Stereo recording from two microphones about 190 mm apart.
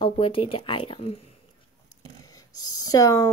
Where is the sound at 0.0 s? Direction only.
30° left (ahead or behind).